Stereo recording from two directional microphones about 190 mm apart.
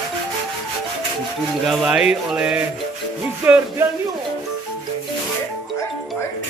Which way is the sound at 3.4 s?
10° right (ahead or behind).